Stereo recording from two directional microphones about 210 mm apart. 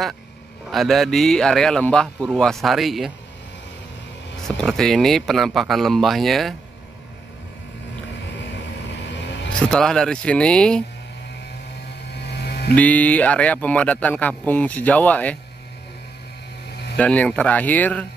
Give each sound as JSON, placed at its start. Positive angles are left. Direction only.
{"t": 0.7, "sound": "speech", "side_deg": 0}
{"t": 4.4, "sound": "speech", "side_deg": 5}
{"t": 9.5, "sound": "speech", "side_deg": 5}
{"t": 12.3, "sound": "a sound", "side_deg": 50}
{"t": 12.7, "sound": "a man's voice", "side_deg": 5}
{"t": 16.9, "sound": "a man's voice", "side_deg": 5}